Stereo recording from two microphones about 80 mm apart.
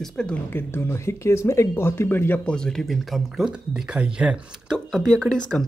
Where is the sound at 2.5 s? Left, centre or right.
Centre.